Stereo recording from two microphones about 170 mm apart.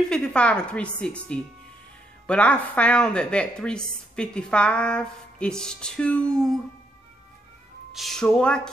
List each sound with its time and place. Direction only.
0.1 s a woman's voice: 5° left (ahead or behind)
7.9 s speech: centre (ahead or behind)